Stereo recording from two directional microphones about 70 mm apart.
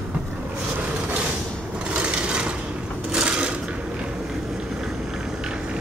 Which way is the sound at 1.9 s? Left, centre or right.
Centre.